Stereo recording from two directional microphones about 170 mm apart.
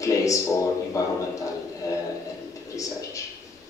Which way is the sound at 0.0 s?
20° left (ahead or behind).